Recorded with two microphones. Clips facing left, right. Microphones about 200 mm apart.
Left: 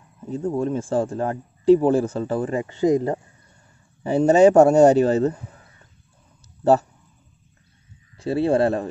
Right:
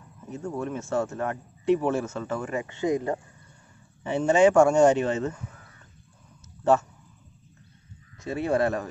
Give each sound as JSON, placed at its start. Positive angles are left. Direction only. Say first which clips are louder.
{"t": 0.3, "sound": "a man's voice", "louder": "left 8 dB", "side_deg": 30}
{"t": 6.6, "sound": "speech", "louder": "left 4 dB", "side_deg": 35}
{"t": 8.2, "sound": "a man's voice", "louder": "left 6 dB", "side_deg": 30}